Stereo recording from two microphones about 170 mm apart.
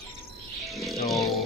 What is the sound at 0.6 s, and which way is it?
Music, centre (ahead or behind).